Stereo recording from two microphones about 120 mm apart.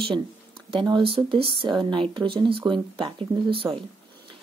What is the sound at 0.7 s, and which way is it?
Speech, 40° right (ahead or behind).